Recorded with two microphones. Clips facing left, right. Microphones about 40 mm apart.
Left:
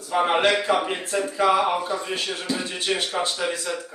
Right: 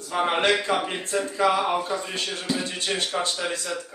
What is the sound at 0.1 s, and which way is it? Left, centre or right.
A man's voice, centre.